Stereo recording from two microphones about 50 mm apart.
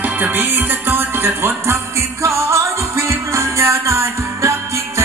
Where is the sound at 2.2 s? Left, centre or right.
Right.